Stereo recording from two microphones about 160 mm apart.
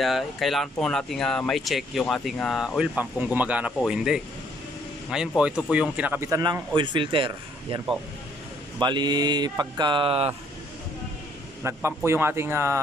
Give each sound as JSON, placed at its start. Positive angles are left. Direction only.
{"t": 0.0, "sound": "speech", "side_deg": 0}
{"t": 5.4, "sound": "speech", "side_deg": -5}
{"t": 11.6, "sound": "a man's voice", "side_deg": -15}